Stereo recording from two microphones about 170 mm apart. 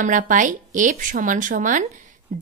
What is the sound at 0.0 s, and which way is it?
Speech, 50° right (ahead or behind).